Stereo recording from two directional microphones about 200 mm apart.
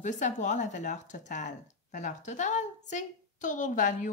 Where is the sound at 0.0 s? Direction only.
40° left (ahead or behind).